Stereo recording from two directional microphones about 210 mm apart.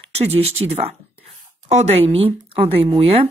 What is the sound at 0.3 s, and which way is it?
Speech, 30° right (ahead or behind).